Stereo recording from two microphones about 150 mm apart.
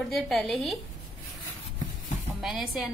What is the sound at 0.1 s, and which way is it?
Speech, centre (ahead or behind).